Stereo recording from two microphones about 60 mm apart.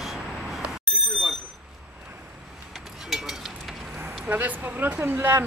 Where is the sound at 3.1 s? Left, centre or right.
Centre.